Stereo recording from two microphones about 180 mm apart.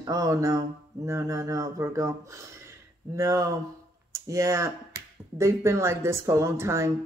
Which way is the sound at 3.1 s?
15° right (ahead or behind).